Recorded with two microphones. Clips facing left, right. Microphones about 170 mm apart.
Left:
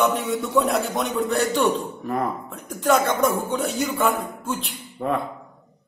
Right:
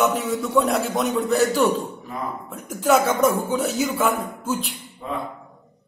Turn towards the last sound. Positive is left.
turn(degrees=60)  # may be behind; listen again after turning